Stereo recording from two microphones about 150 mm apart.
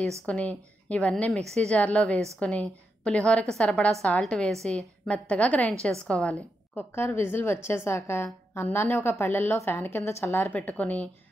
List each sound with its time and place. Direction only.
0.3 s a woman's voice: 10° left (ahead or behind)